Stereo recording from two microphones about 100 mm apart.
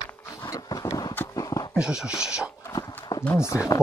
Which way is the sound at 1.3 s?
35° left (ahead or behind).